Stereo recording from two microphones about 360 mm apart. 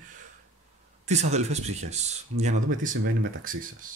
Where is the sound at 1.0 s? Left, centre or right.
Centre.